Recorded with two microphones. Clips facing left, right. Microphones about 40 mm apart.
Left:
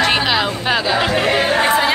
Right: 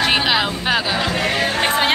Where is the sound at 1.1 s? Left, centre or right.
Left.